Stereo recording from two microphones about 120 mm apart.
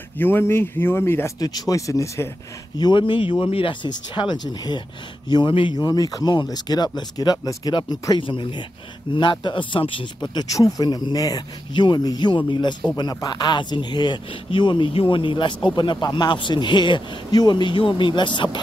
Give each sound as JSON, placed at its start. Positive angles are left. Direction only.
{"t": 0.2, "sound": "speech", "side_deg": 20}
{"t": 1.4, "sound": "speech", "side_deg": 30}
{"t": 2.8, "sound": "speech", "side_deg": 40}
{"t": 5.9, "sound": "speech", "side_deg": 30}
{"t": 10.3, "sound": "speech", "side_deg": 30}